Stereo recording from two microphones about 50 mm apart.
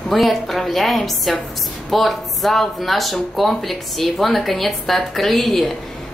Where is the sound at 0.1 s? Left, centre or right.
Centre.